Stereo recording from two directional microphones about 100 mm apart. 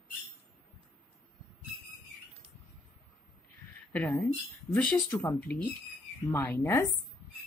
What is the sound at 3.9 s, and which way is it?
Speech, 15° left (ahead or behind).